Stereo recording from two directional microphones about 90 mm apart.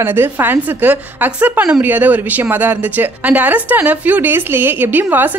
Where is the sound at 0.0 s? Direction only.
25° right (ahead or behind).